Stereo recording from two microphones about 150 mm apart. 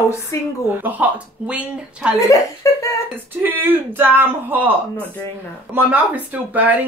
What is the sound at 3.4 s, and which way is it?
Speech, 15° right (ahead or behind).